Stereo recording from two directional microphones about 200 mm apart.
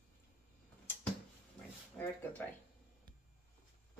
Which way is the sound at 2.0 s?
5° left (ahead or behind).